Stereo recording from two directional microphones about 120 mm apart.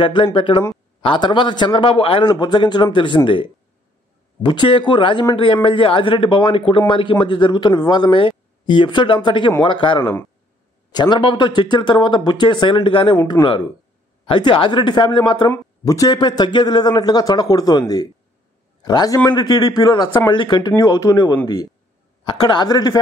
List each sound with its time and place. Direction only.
0.0 s a man's voice: 45° left (ahead or behind)
4.4 s a man's voice: 40° left (ahead or behind)
15.8 s a man's voice: 30° left (ahead or behind)
20.7 s a man's voice: 30° left (ahead or behind)